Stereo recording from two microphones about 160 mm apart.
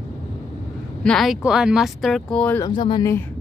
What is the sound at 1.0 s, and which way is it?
Speech, centre (ahead or behind).